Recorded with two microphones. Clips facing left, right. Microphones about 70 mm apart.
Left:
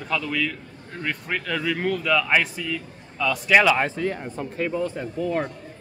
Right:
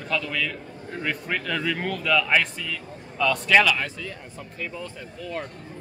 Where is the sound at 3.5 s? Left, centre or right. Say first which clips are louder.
Left 4 dB; left.